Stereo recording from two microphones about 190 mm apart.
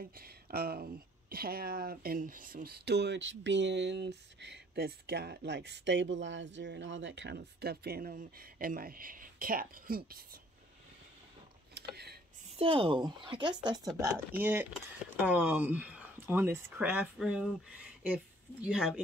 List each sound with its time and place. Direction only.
0.0 s speech: 50° right (ahead or behind)
11.7 s a sound: 60° right (ahead or behind)
12.5 s speech: 30° right (ahead or behind)
13.9 s speech: 15° right (ahead or behind)